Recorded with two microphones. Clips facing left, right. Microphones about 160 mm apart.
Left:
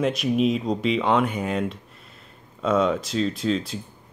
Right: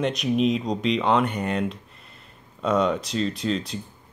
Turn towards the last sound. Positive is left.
turn(degrees=0)  # may be behind; listen again after turning